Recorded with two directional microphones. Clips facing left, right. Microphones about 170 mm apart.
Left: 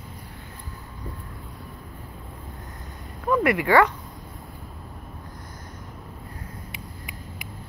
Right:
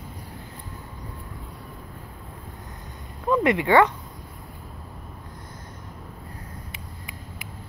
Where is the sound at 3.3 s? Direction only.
20° right (ahead or behind).